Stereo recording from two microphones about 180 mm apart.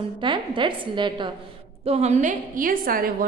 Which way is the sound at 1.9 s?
40° right (ahead or behind).